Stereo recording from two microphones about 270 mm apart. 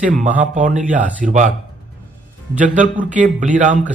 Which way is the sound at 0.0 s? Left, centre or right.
Right.